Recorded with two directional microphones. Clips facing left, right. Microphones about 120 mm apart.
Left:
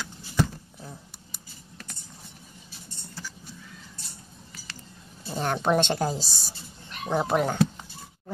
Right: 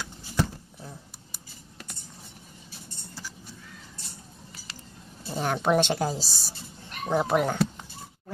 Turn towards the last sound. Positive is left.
turn(degrees=0)  # may be behind; listen again after turning